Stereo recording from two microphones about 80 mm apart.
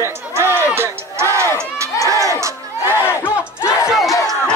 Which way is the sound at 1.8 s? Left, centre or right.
Right.